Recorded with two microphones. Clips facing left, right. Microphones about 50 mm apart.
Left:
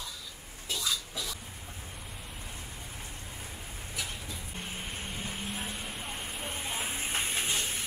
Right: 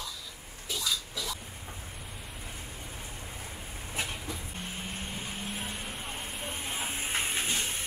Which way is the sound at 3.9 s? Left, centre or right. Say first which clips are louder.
Right 4 dB; right.